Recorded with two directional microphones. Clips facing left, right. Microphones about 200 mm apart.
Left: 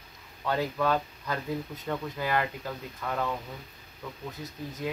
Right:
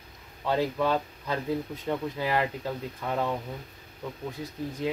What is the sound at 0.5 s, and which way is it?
Speech, 20° right (ahead or behind).